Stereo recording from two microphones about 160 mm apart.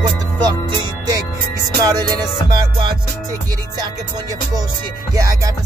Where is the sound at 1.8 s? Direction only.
20° right (ahead or behind).